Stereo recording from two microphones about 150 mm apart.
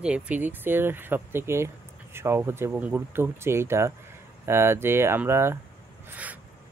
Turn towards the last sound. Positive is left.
turn(degrees=-15)  # may be behind; listen again after turning